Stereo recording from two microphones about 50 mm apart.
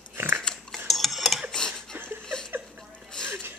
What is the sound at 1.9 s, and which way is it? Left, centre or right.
Chuckle, right.